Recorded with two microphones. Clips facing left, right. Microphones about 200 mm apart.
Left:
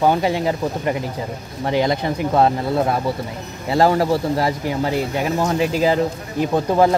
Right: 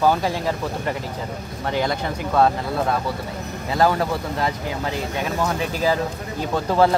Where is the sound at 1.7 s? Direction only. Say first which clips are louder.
Left 4 dB; 20° left (ahead or behind).